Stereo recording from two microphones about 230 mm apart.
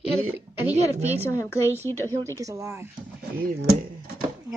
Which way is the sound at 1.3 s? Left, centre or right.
Centre.